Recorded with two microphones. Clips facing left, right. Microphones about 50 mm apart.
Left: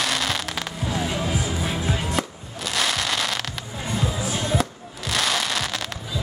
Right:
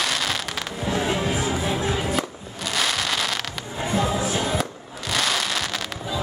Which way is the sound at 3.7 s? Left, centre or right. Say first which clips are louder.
Right 4 dB; centre.